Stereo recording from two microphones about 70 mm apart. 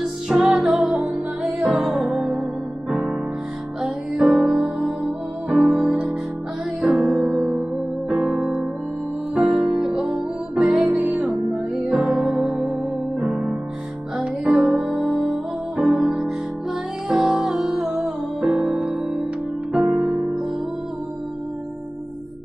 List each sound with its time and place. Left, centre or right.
0.0 s music: centre
2.9 s music: centre
11.0 s music: right
11.2 s music: centre
13.2 s music: centre